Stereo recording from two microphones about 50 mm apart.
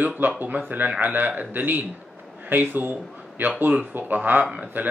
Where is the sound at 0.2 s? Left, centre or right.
Right.